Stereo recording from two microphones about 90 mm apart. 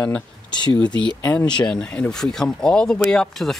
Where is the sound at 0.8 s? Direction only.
60° left (ahead or behind).